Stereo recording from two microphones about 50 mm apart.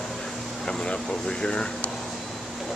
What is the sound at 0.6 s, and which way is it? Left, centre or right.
Speech, centre.